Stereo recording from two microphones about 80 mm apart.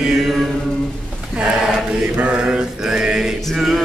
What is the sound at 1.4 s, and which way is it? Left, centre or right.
Mantra, centre.